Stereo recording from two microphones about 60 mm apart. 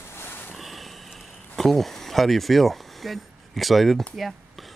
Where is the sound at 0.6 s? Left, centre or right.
Centre.